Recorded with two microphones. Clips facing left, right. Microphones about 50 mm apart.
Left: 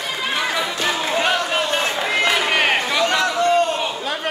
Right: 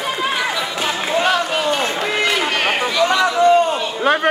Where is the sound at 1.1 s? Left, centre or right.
Centre.